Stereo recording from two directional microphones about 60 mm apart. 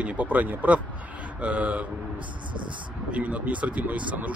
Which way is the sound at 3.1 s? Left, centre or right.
Right.